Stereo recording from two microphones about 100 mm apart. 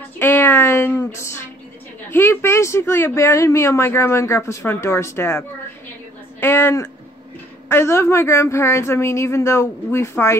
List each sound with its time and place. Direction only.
0.2 s music: 20° left (ahead or behind)
2.0 s speech: 25° left (ahead or behind)
6.4 s speech: 25° left (ahead or behind)